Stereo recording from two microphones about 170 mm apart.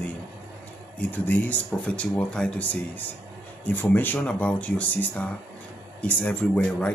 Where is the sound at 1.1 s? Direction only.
10° left (ahead or behind).